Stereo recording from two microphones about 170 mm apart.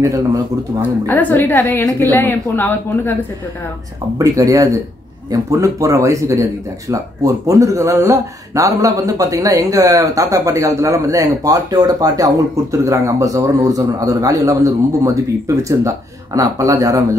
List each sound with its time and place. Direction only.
0.0 s speech: 20° right (ahead or behind)
1.0 s a woman's voice: 10° left (ahead or behind)
4.2 s speech: 20° right (ahead or behind)
16.3 s speech: 20° right (ahead or behind)